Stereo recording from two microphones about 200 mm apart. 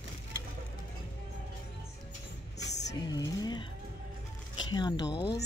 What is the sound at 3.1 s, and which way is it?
Speech, 20° left (ahead or behind).